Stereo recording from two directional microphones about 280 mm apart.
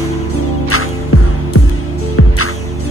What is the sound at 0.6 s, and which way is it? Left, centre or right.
Music, left.